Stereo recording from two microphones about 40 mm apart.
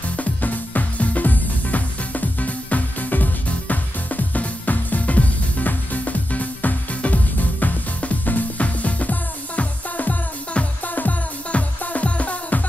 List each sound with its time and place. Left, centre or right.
0.2 s music: left